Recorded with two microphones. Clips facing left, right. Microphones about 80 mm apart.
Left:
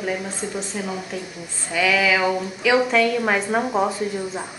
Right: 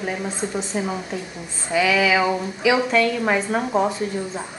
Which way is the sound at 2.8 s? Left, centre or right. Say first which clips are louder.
Even; centre.